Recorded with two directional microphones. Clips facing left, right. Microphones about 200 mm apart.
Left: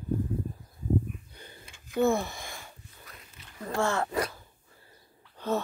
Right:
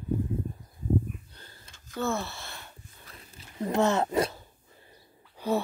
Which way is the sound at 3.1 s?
30° right (ahead or behind).